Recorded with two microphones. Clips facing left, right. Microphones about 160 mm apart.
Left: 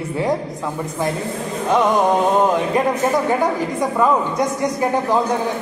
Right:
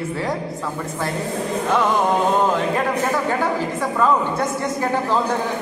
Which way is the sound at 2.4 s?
15° left (ahead or behind).